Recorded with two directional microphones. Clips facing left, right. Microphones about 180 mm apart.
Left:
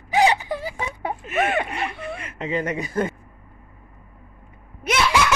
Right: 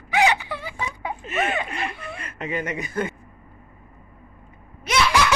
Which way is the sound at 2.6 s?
35° left (ahead or behind).